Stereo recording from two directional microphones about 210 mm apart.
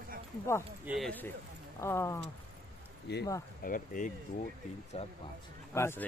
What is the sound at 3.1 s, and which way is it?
Speech, 55° left (ahead or behind).